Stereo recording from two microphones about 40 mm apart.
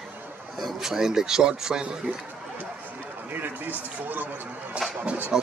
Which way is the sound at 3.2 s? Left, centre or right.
Right.